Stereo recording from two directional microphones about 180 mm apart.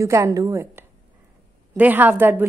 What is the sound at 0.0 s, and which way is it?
A woman's voice, 15° right (ahead or behind).